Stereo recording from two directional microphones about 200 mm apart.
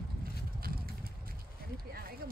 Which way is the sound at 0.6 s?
50° right (ahead or behind).